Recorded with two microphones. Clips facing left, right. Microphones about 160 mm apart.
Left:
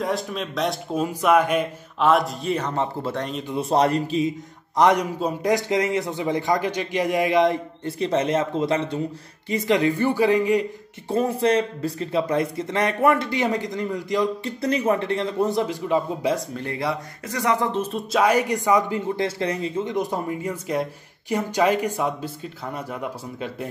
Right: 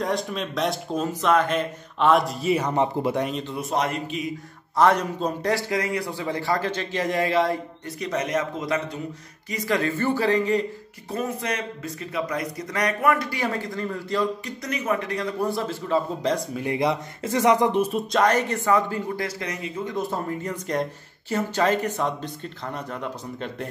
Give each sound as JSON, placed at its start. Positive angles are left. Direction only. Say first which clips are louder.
{"t": 0.0, "sound": "a man's voice", "louder": "even", "side_deg": 0}
{"t": 3.5, "sound": "a man's voice", "louder": "left 8 dB", "side_deg": 30}
{"t": 4.7, "sound": "speech", "louder": "left 1 dB", "side_deg": 15}
{"t": 11.1, "sound": "speech", "louder": "left 7 dB", "side_deg": 30}
{"t": 14.4, "sound": "speech", "louder": "left 7 dB", "side_deg": 30}
{"t": 16.5, "sound": "speech", "louder": "right 3 dB", "side_deg": -15}
{"t": 18.1, "sound": "speech", "louder": "left 3 dB", "side_deg": 10}